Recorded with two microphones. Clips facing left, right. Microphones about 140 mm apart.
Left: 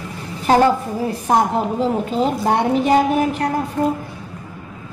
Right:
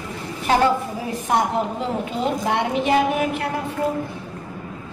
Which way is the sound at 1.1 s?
35° left (ahead or behind).